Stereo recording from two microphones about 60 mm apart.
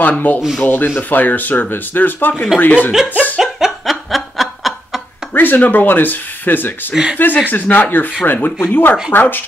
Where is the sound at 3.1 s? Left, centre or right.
Left.